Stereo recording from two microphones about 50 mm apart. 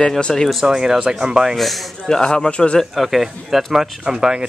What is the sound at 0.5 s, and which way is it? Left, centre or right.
Speech, centre.